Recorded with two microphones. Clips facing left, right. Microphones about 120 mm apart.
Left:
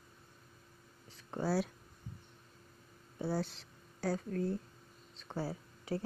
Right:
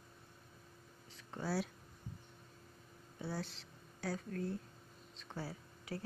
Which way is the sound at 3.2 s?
35° left (ahead or behind).